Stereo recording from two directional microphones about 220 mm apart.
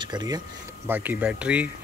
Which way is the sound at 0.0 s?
20° right (ahead or behind).